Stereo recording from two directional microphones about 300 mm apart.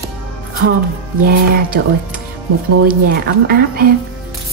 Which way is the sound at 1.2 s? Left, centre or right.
Right.